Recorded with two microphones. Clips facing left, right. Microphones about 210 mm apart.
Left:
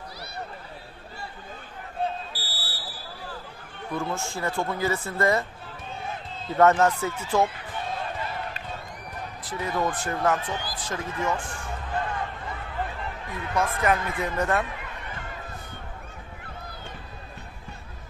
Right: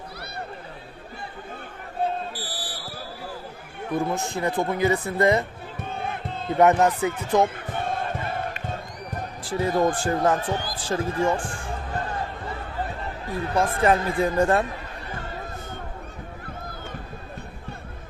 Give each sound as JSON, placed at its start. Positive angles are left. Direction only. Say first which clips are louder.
{"t": 2.3, "sound": "basketball bounce", "louder": "right 5 dB", "side_deg": -15}
{"t": 4.0, "sound": "speech", "louder": "right 4 dB", "side_deg": -20}
{"t": 5.8, "sound": "crowd", "louder": "right 5 dB", "side_deg": -60}
{"t": 6.6, "sound": "a man's voice", "louder": "right 1 dB", "side_deg": -15}
{"t": 7.4, "sound": "a sound", "louder": "right 4 dB", "side_deg": -50}
{"t": 9.4, "sound": "speech", "louder": "right 6 dB", "side_deg": -30}
{"t": 10.4, "sound": "speech", "louder": "right 5 dB", "side_deg": -45}
{"t": 10.8, "sound": "basketball bounce", "louder": "right 8 dB", "side_deg": -30}
{"t": 13.3, "sound": "speech", "louder": "right 4 dB", "side_deg": -35}